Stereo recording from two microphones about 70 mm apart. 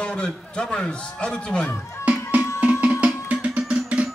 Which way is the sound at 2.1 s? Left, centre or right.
Centre.